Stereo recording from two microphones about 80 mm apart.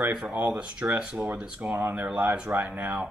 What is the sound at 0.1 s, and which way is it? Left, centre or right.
Speech, centre.